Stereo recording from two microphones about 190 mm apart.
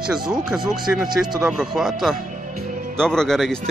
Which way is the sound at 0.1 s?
5° right (ahead or behind).